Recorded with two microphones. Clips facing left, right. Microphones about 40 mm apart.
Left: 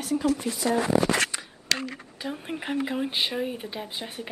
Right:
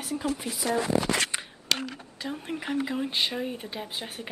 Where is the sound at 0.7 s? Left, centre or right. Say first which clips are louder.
Left 2 dB; left.